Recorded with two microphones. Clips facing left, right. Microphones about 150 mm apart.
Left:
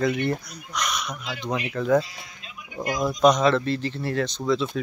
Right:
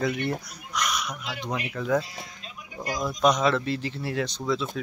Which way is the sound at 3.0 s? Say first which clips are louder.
Left 4 dB; centre (ahead or behind).